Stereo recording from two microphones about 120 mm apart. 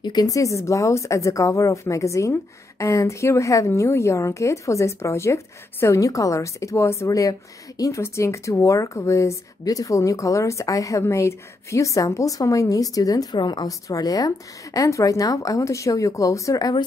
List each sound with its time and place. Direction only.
0.0 s a woman's voice: 35° left (ahead or behind)